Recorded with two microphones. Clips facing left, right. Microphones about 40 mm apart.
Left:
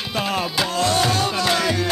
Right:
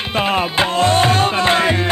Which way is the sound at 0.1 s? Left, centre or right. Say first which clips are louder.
Right 6 dB; right.